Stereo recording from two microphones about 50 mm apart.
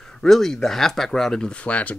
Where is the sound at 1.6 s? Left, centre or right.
Left.